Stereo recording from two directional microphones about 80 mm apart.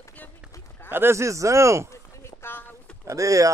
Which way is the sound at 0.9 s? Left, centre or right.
Right.